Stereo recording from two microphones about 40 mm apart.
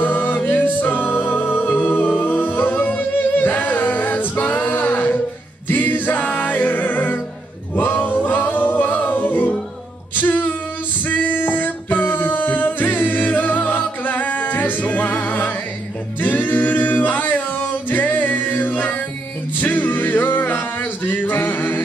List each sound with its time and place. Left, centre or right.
0.0 s singing: left
0.5 s music: left
2.8 s singing: left
5.7 s music: left
10.1 s a sound: left
11.1 s music: left
16.2 s singing: left
19.6 s music: left